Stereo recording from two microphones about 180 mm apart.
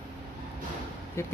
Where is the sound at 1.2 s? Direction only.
15° left (ahead or behind).